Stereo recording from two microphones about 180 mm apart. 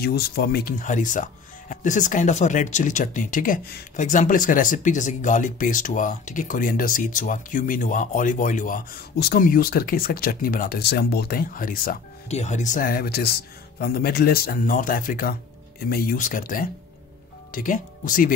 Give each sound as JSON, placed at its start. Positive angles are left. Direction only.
{"t": 0.0, "sound": "speech", "side_deg": 60}
{"t": 12.3, "sound": "speech", "side_deg": 40}